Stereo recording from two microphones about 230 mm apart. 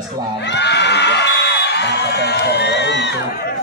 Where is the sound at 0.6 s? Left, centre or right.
Left.